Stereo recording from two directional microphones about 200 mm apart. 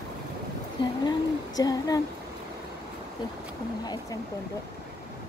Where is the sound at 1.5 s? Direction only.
20° left (ahead or behind).